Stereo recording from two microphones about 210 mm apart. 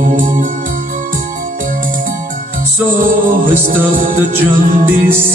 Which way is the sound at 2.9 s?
40° right (ahead or behind).